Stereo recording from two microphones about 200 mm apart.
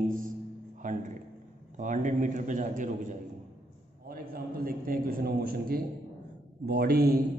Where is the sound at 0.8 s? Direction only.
40° right (ahead or behind).